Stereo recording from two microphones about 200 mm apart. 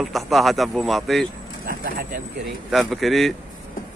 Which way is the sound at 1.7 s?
45° right (ahead or behind).